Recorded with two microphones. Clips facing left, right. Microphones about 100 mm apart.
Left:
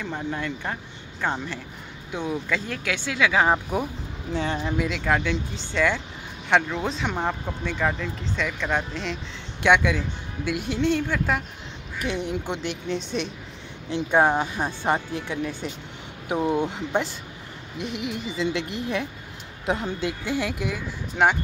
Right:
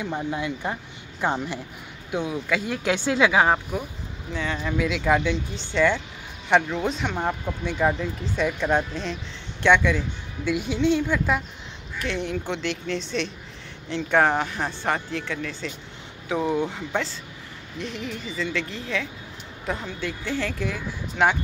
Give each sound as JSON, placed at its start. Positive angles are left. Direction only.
{"t": 0.0, "sound": "speech", "side_deg": -10}
{"t": 2.8, "sound": "speech", "side_deg": -30}
{"t": 4.3, "sound": "speech", "side_deg": 30}
{"t": 4.7, "sound": "speech", "side_deg": 0}
{"t": 7.2, "sound": "speech", "side_deg": -10}
{"t": 12.0, "sound": "speech", "side_deg": 10}
{"t": 18.4, "sound": "speech", "side_deg": 20}